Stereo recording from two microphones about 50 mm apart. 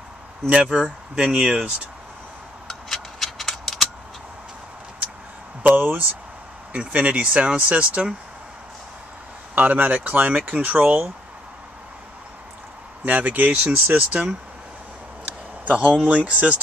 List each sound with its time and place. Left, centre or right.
0.5 s speech: centre
2.7 s a sound: centre
5.6 s speech: right
9.6 s speech: right
13.0 s speech: right
15.6 s a man's voice: right